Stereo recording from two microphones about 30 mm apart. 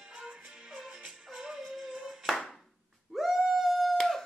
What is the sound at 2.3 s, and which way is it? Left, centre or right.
Clapping, centre.